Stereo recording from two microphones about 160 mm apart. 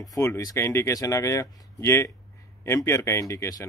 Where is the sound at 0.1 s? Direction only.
20° left (ahead or behind).